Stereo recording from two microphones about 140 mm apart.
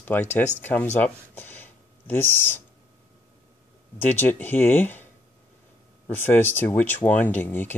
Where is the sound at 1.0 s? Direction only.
15° left (ahead or behind).